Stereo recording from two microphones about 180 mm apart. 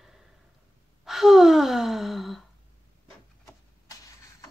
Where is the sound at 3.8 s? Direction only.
20° left (ahead or behind).